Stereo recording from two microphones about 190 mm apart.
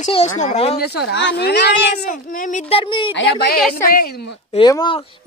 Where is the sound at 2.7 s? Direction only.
25° left (ahead or behind).